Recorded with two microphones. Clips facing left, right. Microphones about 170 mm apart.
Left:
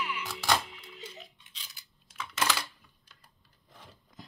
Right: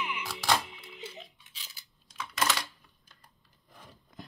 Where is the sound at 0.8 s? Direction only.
20° right (ahead or behind).